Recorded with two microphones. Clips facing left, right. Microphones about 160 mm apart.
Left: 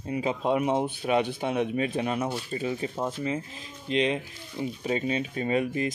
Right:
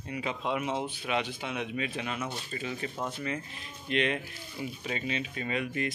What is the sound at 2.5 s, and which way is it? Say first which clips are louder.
Speech: left 6 dB; 30° left (ahead or behind).